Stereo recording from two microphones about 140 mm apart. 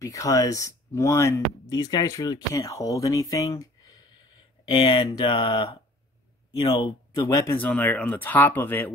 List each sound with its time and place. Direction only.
0.0 s speech: 25° left (ahead or behind)
4.6 s speech: 35° left (ahead or behind); by 8.9 s 15° left (ahead or behind)